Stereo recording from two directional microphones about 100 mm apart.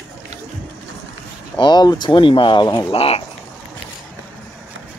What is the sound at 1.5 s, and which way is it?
Speech, 50° left (ahead or behind).